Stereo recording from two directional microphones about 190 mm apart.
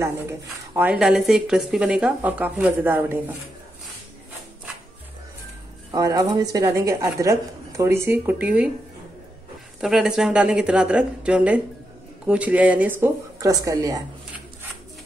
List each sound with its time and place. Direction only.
0.0 s speech: 15° right (ahead or behind)
5.9 s speech: 15° right (ahead or behind)
9.8 s speech: centre (ahead or behind)